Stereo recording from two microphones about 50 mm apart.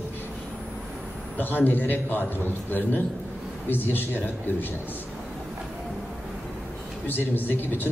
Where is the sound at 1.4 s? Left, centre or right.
Left.